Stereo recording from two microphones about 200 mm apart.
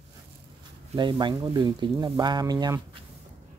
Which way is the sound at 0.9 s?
25° right (ahead or behind).